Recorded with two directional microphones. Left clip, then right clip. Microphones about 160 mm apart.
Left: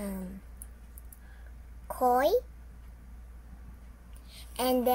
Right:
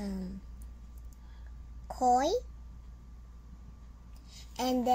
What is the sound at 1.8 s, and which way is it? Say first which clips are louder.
Speech: left 2 dB; 10° right (ahead or behind).